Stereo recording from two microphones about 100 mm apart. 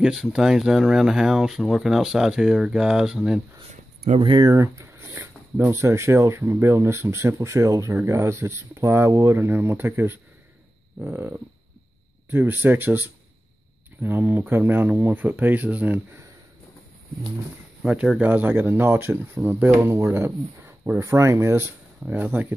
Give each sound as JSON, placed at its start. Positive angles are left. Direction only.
{"t": 0.0, "sound": "speech", "side_deg": -5}
{"t": 4.2, "sound": "speech", "side_deg": -55}
{"t": 4.5, "sound": "speech", "side_deg": -30}
{"t": 17.8, "sound": "speech", "side_deg": -10}